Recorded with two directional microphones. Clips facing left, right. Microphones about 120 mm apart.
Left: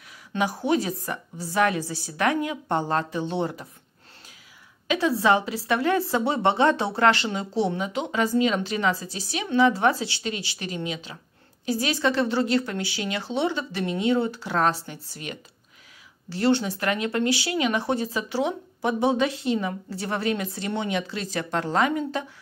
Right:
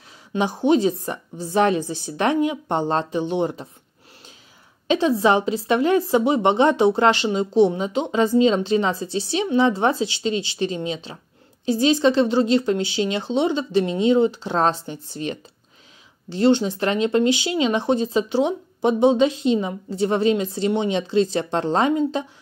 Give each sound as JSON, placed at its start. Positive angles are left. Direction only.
{"t": 0.3, "sound": "a woman's voice", "side_deg": -20}
{"t": 4.8, "sound": "a woman's voice", "side_deg": -20}